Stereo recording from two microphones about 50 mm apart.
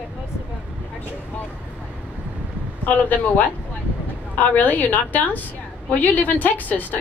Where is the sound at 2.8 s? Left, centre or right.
Left.